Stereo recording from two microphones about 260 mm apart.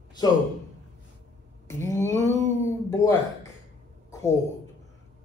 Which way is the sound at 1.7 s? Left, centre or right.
Centre.